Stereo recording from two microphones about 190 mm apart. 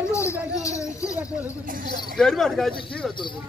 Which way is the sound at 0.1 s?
15° left (ahead or behind).